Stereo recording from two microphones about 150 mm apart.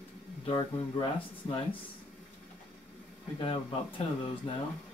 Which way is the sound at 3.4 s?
35° left (ahead or behind).